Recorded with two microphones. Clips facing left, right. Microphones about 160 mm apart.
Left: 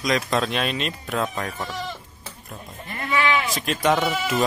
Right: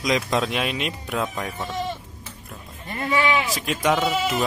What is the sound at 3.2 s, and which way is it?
Bleat, 10° right (ahead or behind).